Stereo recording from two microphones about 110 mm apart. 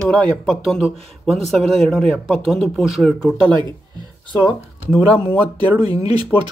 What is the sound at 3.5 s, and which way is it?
Speech, 45° right (ahead or behind).